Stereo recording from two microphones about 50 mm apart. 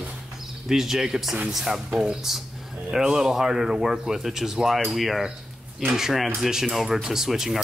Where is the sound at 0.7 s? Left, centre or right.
Centre.